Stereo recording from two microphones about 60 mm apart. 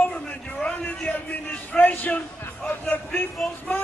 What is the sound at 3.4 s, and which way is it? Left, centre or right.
Speech, centre.